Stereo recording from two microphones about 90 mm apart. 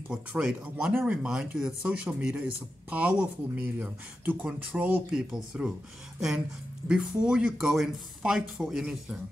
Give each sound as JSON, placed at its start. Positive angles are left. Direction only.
{"t": 0.1, "sound": "speech", "side_deg": -10}
{"t": 6.9, "sound": "speech", "side_deg": -10}